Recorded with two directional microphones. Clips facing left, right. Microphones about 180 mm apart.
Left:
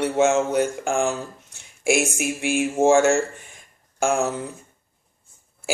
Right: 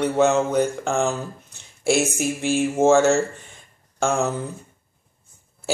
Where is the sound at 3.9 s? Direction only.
15° left (ahead or behind).